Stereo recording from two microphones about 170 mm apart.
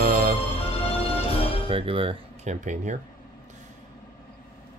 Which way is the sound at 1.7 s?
30° right (ahead or behind).